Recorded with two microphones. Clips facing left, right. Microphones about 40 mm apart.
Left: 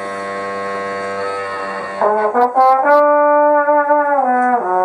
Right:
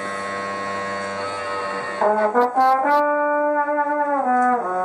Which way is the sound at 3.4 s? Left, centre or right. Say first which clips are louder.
Left 8 dB; centre.